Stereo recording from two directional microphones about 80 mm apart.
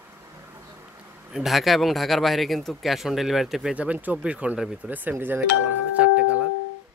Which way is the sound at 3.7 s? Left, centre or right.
Centre.